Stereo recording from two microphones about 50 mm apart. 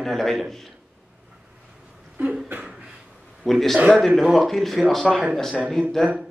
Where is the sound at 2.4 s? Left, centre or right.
Right.